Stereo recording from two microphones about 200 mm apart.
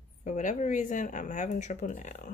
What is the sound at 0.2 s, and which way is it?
Speech, 40° left (ahead or behind).